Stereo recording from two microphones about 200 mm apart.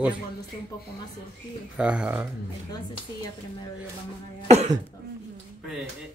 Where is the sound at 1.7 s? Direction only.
5° right (ahead or behind).